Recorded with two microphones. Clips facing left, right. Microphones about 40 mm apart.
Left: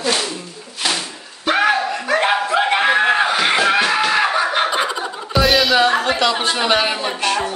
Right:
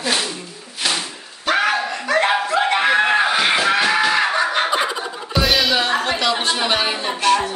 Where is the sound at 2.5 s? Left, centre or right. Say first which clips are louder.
Left 1 dB; centre.